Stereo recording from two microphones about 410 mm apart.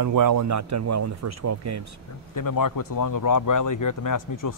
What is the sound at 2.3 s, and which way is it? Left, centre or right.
Speech, left.